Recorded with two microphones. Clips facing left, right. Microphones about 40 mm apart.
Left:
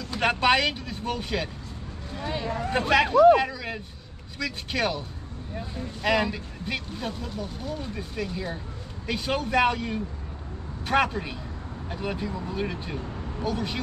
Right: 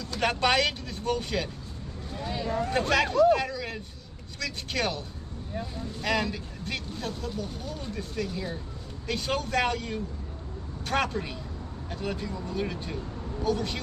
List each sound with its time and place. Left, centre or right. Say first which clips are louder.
0.0 s speech: left 3 dB; centre
2.1 s speech: even; left
6.0 s speech: left 4 dB; centre